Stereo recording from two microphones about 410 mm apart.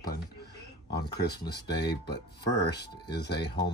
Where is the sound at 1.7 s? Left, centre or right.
Left.